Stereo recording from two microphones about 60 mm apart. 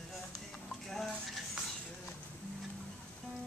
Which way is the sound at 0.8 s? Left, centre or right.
Centre.